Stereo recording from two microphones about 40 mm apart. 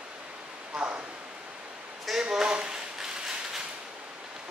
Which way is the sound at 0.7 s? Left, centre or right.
Right.